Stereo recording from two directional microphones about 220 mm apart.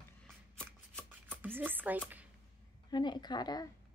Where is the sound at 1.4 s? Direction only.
10° right (ahead or behind).